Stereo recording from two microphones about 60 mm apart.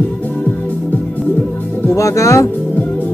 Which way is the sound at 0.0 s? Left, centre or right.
Left.